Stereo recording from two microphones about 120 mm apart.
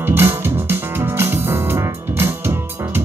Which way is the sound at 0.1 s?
20° right (ahead or behind).